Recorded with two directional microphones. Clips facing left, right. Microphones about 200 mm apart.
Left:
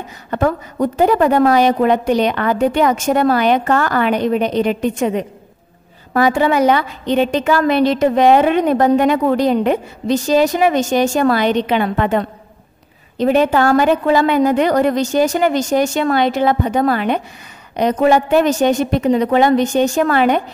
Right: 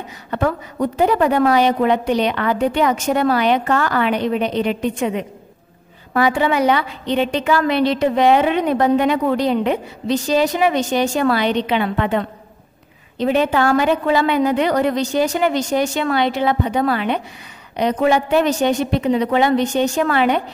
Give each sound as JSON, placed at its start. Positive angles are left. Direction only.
{"t": 0.3, "sound": "a woman's voice", "side_deg": 45}